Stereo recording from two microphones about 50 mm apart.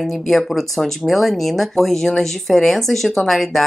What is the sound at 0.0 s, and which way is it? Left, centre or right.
Speech, centre.